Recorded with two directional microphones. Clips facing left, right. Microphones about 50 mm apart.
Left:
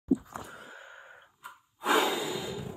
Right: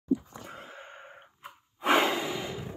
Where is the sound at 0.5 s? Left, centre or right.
Right.